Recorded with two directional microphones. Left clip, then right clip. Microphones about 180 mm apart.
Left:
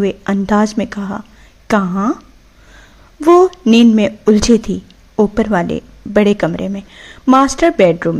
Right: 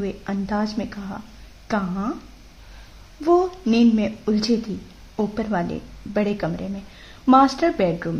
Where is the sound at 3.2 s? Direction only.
35° left (ahead or behind).